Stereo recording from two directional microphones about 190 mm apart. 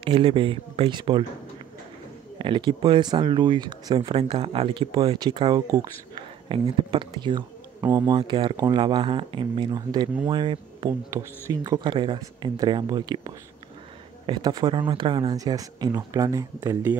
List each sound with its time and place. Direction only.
0.0 s speech: 25° right (ahead or behind)
2.3 s speech: 25° right (ahead or behind)